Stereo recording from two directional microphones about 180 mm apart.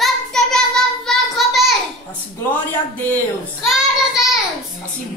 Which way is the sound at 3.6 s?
Centre (ahead or behind).